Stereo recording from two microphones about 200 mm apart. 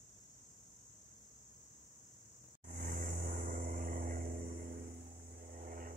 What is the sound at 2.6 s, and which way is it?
Vehicle, 45° right (ahead or behind).